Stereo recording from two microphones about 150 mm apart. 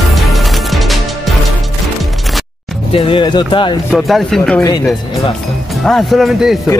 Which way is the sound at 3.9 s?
Centre (ahead or behind).